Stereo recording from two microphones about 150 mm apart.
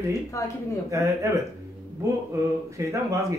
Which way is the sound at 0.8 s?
20° right (ahead or behind).